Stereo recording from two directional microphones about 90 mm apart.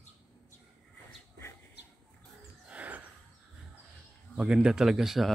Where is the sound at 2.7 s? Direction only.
15° right (ahead or behind).